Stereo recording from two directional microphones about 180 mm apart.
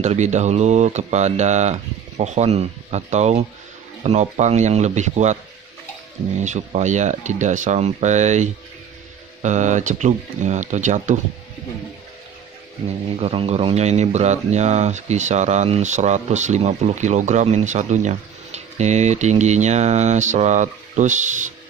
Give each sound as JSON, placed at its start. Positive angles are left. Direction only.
{"t": 0.0, "sound": "speech", "side_deg": -40}
{"t": 13.2, "sound": "speech", "side_deg": -35}